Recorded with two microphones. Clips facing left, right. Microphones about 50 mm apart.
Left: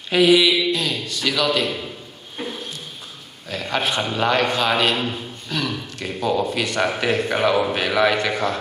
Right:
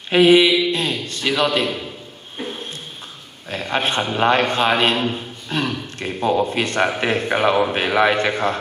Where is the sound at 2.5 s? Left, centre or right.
Right.